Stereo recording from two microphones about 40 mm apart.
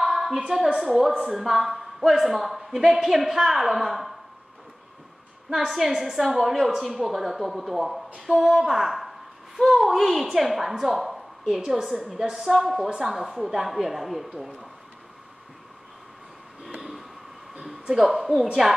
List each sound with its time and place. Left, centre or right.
0.0 s a sound: centre
0.5 s a woman's voice: centre
5.8 s a woman's voice: centre
17.9 s a woman's voice: centre